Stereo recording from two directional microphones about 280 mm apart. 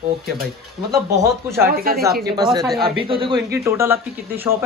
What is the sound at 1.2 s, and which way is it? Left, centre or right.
Speech, centre.